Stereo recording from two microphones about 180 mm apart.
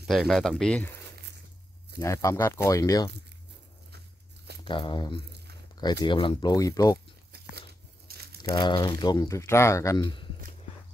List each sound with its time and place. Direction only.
0.0 s speech: centre (ahead or behind)
2.0 s speech: 15° left (ahead or behind)
4.6 s speech: 25° left (ahead or behind)
8.1 s crumpling: 60° right (ahead or behind)
8.5 s speech: 25° left (ahead or behind)